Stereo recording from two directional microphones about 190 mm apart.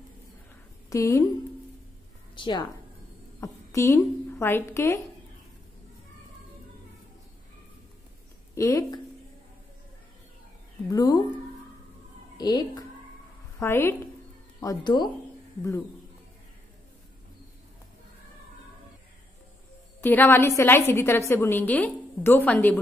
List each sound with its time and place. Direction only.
0.8 s a woman's voice: 15° left (ahead or behind)
2.3 s a woman's voice: 25° left (ahead or behind)
8.5 s a woman's voice: 15° left (ahead or behind)
10.9 s speech: 20° left (ahead or behind)
12.4 s a woman's voice: 20° left (ahead or behind)
20.0 s a woman's voice: 10° left (ahead or behind)